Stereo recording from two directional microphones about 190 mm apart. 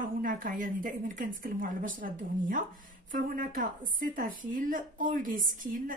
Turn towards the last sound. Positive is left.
turn(degrees=-45)  # may be behind; listen again after turning